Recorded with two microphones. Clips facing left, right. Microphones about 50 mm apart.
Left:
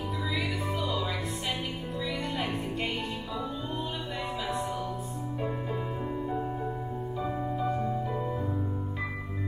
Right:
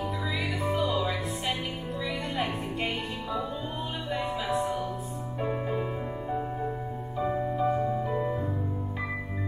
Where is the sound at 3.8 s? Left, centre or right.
Centre.